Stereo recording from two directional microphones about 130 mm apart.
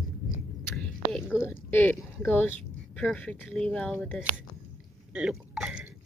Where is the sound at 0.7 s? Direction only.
Centre (ahead or behind).